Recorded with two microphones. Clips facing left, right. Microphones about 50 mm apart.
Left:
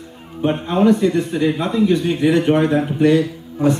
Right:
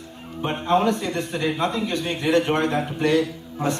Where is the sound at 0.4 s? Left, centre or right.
Centre.